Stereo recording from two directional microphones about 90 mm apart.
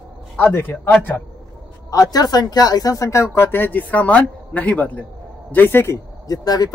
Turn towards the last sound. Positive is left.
turn(degrees=45)  # may be behind; listen again after turning